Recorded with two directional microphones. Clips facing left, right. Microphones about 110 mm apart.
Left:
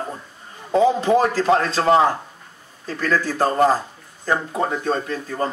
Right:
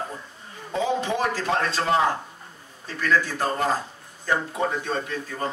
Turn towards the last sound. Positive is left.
turn(degrees=35)  # may be behind; listen again after turning